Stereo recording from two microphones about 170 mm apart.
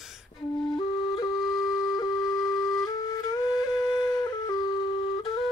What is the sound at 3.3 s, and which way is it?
Flute, 25° left (ahead or behind).